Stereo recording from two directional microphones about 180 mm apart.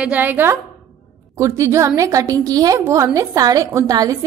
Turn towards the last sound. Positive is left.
turn(degrees=-20)  # may be behind; listen again after turning